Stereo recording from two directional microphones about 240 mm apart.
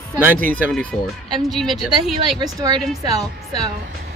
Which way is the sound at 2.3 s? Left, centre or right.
Centre.